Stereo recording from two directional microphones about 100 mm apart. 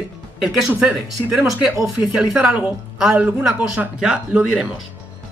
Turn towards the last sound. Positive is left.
turn(degrees=-10)  # may be behind; listen again after turning